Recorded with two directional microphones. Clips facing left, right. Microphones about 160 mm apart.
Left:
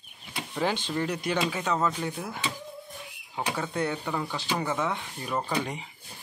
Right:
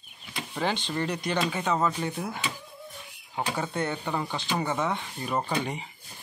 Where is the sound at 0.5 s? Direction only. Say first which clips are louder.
Left 1 dB; 5° left (ahead or behind).